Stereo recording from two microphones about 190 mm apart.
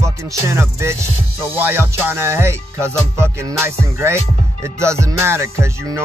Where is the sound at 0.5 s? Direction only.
15° right (ahead or behind).